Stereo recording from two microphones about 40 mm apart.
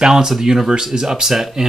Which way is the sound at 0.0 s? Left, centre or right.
Centre.